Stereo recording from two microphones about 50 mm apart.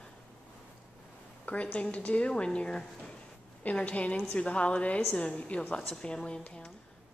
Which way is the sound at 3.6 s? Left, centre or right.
Left.